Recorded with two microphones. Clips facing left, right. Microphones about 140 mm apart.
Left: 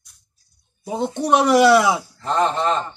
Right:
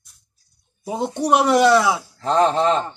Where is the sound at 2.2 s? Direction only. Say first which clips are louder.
Right 3 dB; 30° right (ahead or behind).